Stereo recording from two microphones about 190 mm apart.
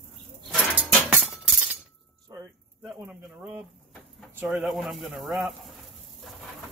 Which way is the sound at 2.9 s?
10° right (ahead or behind).